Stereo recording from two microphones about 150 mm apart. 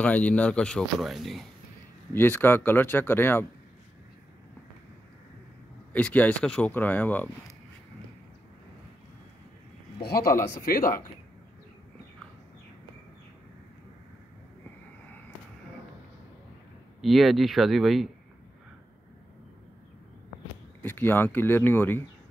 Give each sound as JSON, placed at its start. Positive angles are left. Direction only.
{"t": 0.0, "sound": "speech", "side_deg": 10}
{"t": 2.1, "sound": "speech", "side_deg": 15}
{"t": 5.9, "sound": "speech", "side_deg": 10}
{"t": 10.0, "sound": "a man's voice", "side_deg": 90}
{"t": 10.6, "sound": "speech", "side_deg": 70}
{"t": 17.0, "sound": "speech", "side_deg": 0}
{"t": 20.8, "sound": "speech", "side_deg": 15}